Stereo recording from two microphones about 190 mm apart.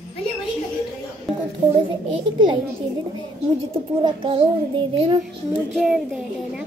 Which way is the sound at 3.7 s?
30° right (ahead or behind).